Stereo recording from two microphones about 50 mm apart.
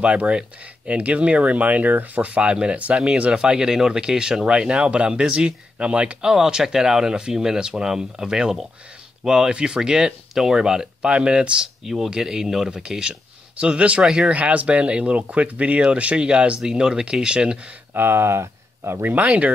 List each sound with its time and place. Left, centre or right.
0.0 s speech: right
5.2 s speech: centre
5.8 s speech: right
6.2 s speech: centre
14.0 s speech: centre
14.3 s speech: right
17.9 s speech: right